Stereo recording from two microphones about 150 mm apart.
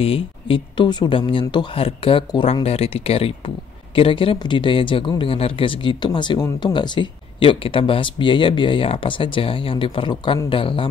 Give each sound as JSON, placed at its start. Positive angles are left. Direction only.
{"t": 0.0, "sound": "speech", "side_deg": 40}